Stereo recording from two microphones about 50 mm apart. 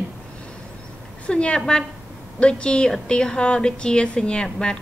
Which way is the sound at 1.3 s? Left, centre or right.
Left.